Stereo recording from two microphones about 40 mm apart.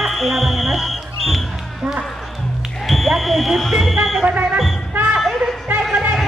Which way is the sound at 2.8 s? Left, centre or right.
Centre.